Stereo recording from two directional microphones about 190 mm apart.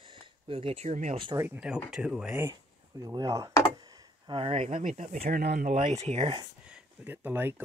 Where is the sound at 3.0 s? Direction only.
20° right (ahead or behind).